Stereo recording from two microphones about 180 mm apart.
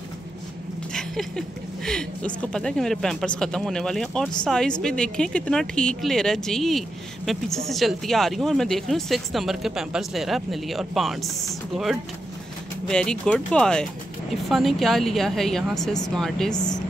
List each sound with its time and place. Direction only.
0.9 s a sound: 5° left (ahead or behind)
1.9 s speech: 5° left (ahead or behind)
16.5 s speech: 20° left (ahead or behind)